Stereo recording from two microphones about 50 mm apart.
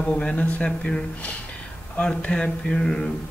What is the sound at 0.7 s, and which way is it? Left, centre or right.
Speech, centre.